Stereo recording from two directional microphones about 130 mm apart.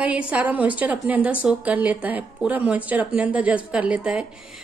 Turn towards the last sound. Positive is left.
turn(degrees=-10)  # may be behind; listen again after turning